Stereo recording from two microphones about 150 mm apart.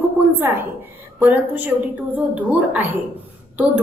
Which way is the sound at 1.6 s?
10° right (ahead or behind).